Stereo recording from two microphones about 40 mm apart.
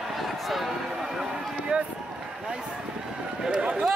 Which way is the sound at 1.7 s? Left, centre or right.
Right.